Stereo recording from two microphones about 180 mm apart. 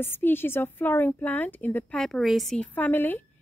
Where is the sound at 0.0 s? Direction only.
10° left (ahead or behind).